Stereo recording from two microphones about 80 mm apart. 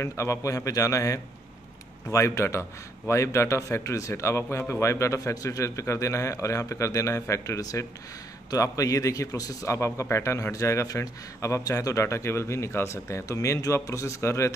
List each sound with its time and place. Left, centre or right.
0.0 s a man's voice: left